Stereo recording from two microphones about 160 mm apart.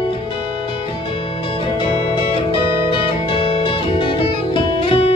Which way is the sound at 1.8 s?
35° left (ahead or behind).